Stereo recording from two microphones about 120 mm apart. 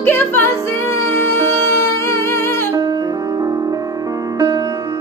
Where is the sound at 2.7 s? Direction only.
30° right (ahead or behind).